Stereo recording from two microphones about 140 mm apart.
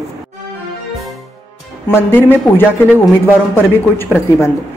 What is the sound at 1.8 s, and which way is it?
A woman's voice, 15° left (ahead or behind).